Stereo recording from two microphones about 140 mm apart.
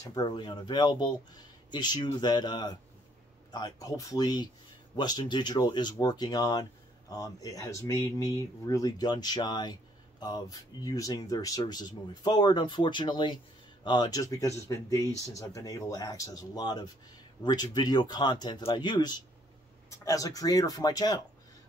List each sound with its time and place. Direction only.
0.1 s speech: 30° left (ahead or behind)